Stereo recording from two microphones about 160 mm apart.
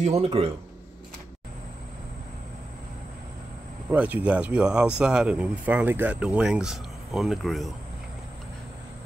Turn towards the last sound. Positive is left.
turn(degrees=0)  # may be behind; listen again after turning